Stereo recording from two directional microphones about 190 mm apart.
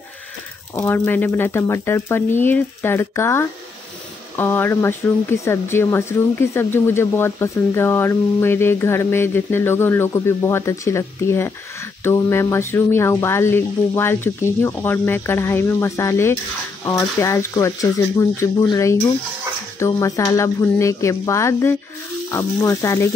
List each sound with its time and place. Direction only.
0.7 s speech: 10° left (ahead or behind)